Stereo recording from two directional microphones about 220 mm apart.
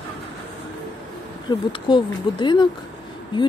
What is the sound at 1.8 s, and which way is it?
Speech, 20° left (ahead or behind).